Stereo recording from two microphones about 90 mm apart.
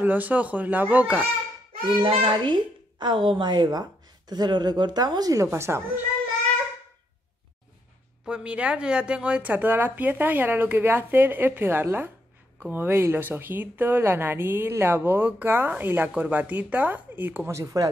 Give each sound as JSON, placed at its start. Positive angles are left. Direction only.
{"t": 0.0, "sound": "speech", "side_deg": -20}
{"t": 2.0, "sound": "a woman's voice", "side_deg": -70}
{"t": 5.5, "sound": "speech", "side_deg": -30}
{"t": 8.3, "sound": "speech", "side_deg": -10}
{"t": 17.5, "sound": "speech", "side_deg": -35}